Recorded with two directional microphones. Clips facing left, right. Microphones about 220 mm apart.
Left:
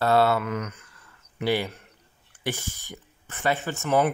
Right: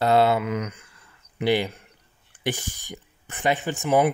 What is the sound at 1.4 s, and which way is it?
Speech, 15° right (ahead or behind).